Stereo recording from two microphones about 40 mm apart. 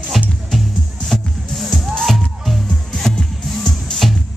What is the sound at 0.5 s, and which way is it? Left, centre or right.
Music, centre.